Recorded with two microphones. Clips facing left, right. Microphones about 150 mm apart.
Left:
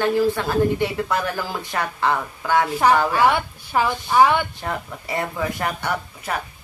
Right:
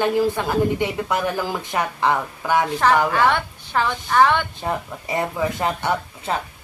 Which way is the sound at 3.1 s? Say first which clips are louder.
Left 1 dB; 10° left (ahead or behind).